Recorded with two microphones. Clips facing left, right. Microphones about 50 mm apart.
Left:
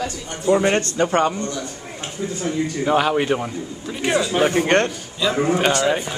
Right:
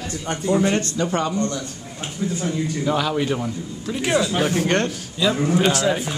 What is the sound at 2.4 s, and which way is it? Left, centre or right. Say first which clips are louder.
A man's voice: left 3 dB; left.